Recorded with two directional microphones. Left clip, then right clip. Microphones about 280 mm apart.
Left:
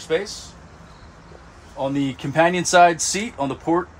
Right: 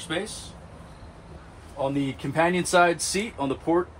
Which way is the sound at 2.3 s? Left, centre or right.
Left.